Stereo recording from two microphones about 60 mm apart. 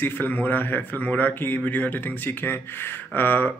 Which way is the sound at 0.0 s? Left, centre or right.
Left.